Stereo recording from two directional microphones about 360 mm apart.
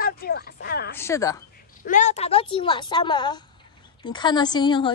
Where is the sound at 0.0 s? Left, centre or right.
Left.